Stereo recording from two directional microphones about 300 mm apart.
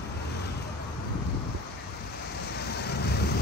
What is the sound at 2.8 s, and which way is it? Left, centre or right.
Vehicle, left.